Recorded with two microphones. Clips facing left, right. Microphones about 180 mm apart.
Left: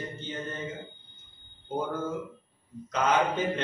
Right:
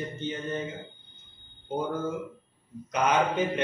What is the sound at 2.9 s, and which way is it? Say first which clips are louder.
Speech: right 1 dB; 15° right (ahead or behind).